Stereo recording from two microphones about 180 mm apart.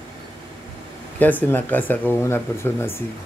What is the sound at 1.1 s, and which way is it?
A man's voice, 10° left (ahead or behind).